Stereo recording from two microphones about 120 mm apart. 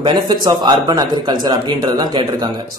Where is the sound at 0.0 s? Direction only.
35° right (ahead or behind).